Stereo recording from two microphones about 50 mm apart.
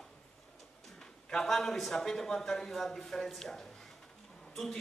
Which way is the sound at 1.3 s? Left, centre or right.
Centre.